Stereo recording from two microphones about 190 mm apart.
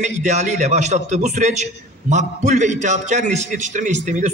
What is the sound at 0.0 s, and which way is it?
A man's voice, 40° right (ahead or behind).